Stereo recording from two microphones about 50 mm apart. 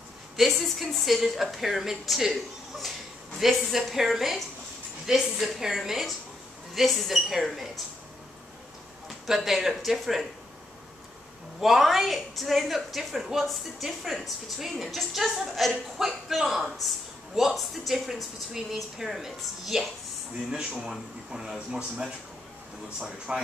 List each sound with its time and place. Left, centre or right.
0.4 s a woman's voice: centre
9.2 s a woman's voice: centre
11.6 s a woman's voice: centre
21.5 s speech: right
23.3 s speech: right